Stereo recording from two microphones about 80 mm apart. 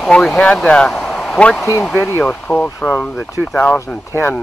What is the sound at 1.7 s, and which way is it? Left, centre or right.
Speech, left.